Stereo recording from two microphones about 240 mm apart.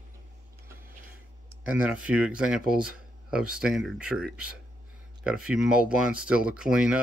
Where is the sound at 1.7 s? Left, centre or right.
Centre.